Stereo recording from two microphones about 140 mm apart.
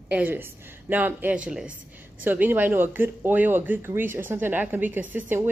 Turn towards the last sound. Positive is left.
turn(degrees=-15)  # may be behind; listen again after turning